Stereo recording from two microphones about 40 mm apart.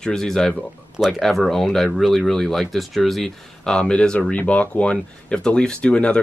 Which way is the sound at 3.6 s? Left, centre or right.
Centre.